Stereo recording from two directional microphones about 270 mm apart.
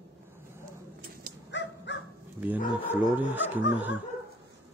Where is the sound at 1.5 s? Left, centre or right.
Left.